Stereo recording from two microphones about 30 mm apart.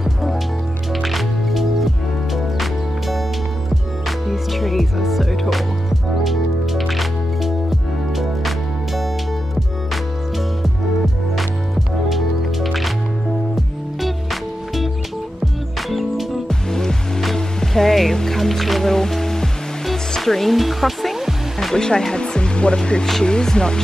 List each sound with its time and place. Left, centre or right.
0.0 s music: centre
4.3 s music: centre
12.1 s music: centre
14.0 s music: centre
15.9 s music: centre
16.4 s music: centre
21.7 s speech: left